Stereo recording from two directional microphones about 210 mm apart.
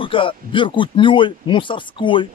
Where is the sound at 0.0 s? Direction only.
25° left (ahead or behind).